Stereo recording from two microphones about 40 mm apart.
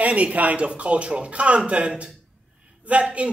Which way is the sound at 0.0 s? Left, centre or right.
Right.